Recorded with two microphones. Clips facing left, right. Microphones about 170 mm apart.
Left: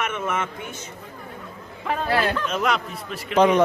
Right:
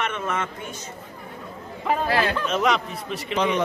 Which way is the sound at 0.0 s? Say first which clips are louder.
Left 1 dB; 10° left (ahead or behind).